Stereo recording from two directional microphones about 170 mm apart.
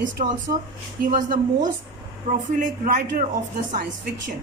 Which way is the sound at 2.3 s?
30° right (ahead or behind).